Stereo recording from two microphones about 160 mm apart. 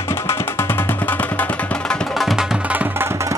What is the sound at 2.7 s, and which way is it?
Music, 10° right (ahead or behind).